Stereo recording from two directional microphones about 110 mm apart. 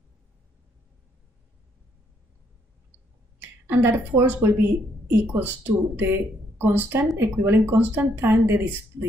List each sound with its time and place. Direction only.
3.6 s speech: 20° right (ahead or behind)